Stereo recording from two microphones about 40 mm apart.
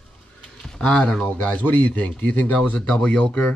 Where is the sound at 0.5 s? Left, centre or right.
Centre.